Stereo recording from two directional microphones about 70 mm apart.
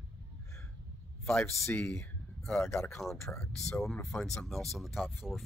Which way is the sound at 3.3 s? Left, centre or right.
Centre.